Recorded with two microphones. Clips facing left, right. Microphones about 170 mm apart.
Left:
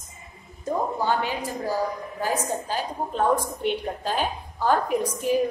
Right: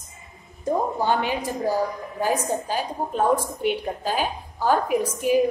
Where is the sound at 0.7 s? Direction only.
15° right (ahead or behind).